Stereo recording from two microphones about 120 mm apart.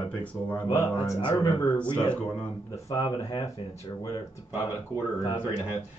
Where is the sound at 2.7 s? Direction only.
30° left (ahead or behind).